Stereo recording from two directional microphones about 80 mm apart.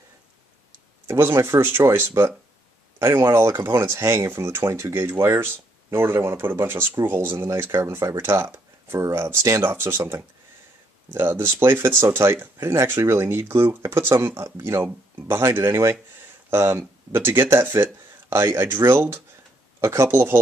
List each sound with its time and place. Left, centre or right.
1.0 s speech: right